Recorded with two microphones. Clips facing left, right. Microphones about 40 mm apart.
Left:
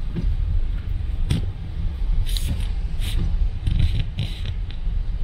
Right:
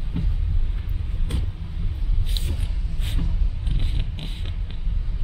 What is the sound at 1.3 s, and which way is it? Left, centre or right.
Vehicle, left.